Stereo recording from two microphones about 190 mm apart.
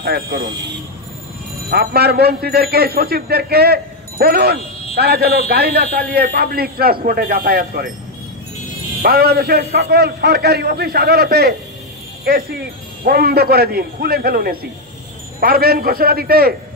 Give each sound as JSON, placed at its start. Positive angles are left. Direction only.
{"t": 0.0, "sound": "speech", "side_deg": -55}
{"t": 1.7, "sound": "a man's voice", "side_deg": -55}
{"t": 9.0, "sound": "a man's voice", "side_deg": -55}